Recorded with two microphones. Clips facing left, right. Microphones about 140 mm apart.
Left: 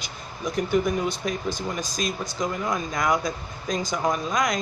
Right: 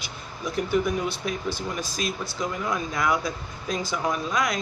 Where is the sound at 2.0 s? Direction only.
5° right (ahead or behind).